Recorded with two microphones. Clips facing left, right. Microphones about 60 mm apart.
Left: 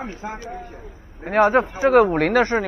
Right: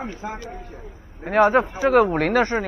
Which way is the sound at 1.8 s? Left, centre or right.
Left.